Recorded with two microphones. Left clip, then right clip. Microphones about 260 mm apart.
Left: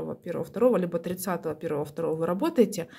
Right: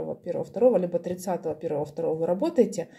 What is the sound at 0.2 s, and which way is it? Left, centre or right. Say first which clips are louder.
Speech: right 2 dB; left.